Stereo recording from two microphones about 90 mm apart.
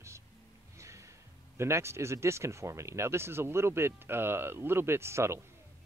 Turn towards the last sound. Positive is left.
turn(degrees=-30)  # may be behind; listen again after turning